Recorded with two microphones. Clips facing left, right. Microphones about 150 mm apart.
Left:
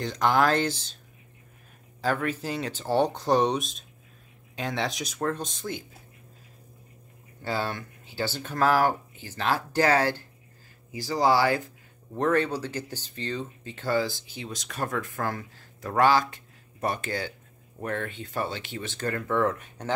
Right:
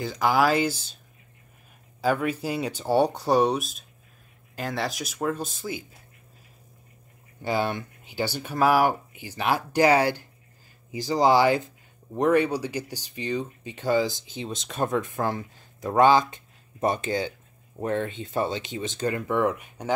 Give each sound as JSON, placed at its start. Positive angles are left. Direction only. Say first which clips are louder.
{"t": 0.0, "sound": "speech", "louder": "right 1 dB", "side_deg": -5}
{"t": 2.0, "sound": "speech", "louder": "right 3 dB", "side_deg": -10}
{"t": 7.4, "sound": "speech", "louder": "right 4 dB", "side_deg": -15}